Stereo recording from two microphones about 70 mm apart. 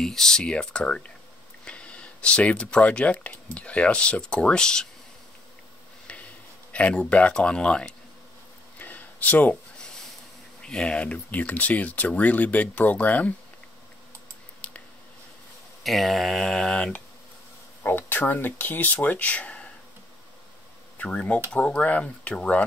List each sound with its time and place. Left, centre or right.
0.0 s speech: centre
6.7 s speech: centre
8.7 s a sound: left
9.8 s a sound: centre
10.6 s speech: centre
14.6 s a sound: centre
15.8 s speech: centre
17.8 s speech: left
21.0 s speech: centre